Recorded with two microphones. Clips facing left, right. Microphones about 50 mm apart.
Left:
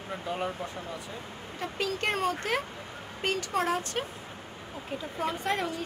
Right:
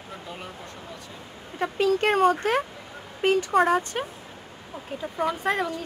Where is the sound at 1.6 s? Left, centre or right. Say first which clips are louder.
Right 9 dB; right.